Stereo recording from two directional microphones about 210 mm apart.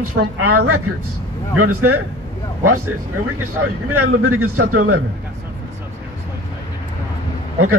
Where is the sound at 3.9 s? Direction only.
90° right.